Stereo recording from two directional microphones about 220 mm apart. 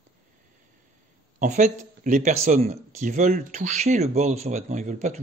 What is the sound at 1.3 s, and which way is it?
Speech, 35° right (ahead or behind).